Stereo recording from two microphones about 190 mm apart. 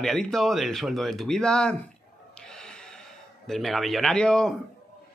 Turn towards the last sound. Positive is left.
turn(degrees=5)  # may be behind; listen again after turning